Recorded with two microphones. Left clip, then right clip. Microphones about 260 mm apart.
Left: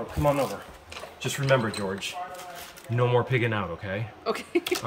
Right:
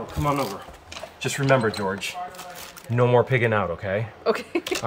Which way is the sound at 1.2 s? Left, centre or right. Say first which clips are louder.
Right 4 dB; centre.